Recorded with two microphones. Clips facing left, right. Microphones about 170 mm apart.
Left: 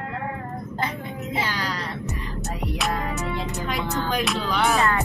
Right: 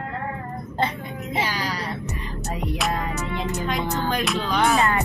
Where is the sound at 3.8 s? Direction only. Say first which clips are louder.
Right 1 dB; 20° right (ahead or behind).